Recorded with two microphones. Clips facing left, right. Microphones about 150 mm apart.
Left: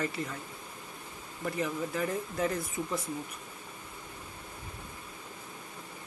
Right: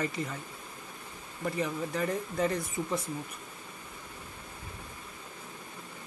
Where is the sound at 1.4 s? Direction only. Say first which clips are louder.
Right 1 dB; centre (ahead or behind).